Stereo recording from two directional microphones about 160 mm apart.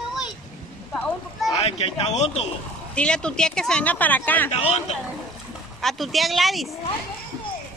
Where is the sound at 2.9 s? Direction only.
5° left (ahead or behind).